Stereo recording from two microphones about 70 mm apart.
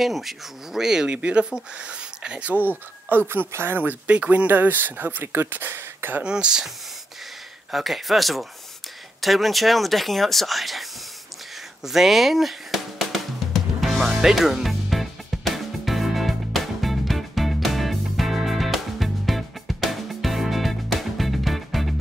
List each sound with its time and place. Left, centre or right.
0.0 s speech: centre; by 3.9 s right
4.1 s speech: centre
6.2 s speech: centre
7.7 s speech: centre
11.8 s drum: centre